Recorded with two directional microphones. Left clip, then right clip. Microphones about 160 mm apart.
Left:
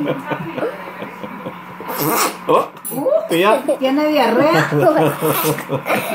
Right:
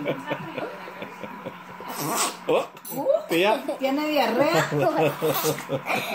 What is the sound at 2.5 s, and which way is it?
Speech, 25° right (ahead or behind).